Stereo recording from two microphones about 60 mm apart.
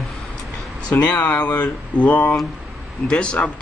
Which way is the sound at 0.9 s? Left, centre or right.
Left.